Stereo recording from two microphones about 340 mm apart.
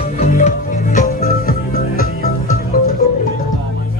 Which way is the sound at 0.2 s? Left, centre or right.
Left.